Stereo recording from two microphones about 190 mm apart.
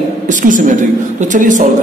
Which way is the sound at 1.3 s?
40° right (ahead or behind).